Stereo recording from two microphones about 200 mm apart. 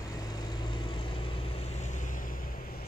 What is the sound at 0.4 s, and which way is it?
Vehicle, 20° left (ahead or behind).